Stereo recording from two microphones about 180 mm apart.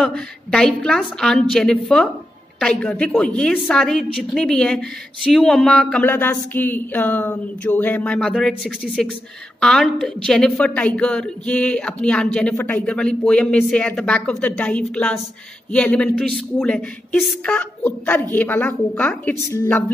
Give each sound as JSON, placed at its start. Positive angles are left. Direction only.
{"t": 0.0, "sound": "a woman's voice", "side_deg": 5}